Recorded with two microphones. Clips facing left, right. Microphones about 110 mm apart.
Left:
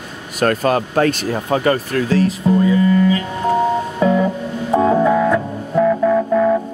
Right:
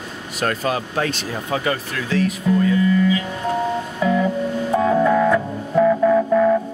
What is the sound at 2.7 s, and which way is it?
Music, 35° left (ahead or behind).